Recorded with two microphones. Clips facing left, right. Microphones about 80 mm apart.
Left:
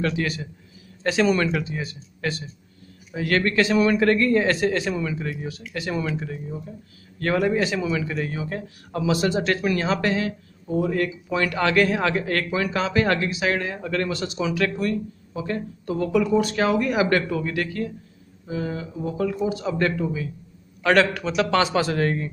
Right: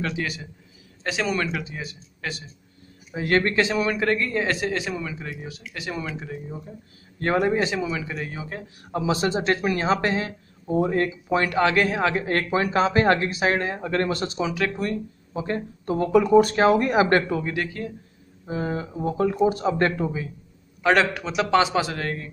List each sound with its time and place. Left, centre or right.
0.0 s speech: centre
3.2 s speech: right
3.7 s speech: centre
7.2 s speech: right
7.8 s speech: centre
8.9 s speech: right
14.4 s speech: right
18.5 s speech: right
20.8 s speech: centre
21.9 s speech: centre